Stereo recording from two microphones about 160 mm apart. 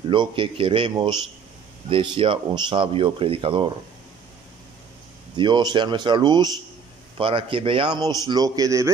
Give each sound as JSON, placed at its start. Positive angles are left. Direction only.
{"t": 0.1, "sound": "speech", "side_deg": -30}
{"t": 5.3, "sound": "a man's voice", "side_deg": -30}